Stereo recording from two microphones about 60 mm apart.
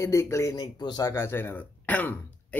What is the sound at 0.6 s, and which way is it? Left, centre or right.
Speech, left.